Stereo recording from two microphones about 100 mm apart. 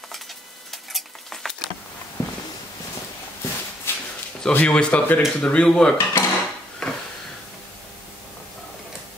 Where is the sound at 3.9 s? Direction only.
25° left (ahead or behind).